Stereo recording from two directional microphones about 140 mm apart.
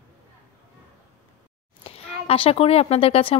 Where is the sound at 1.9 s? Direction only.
45° left (ahead or behind).